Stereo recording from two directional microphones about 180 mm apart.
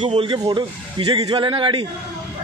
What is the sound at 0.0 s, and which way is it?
A man's voice, 30° right (ahead or behind).